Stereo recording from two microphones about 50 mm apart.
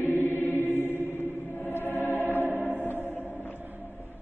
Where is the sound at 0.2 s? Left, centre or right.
Right.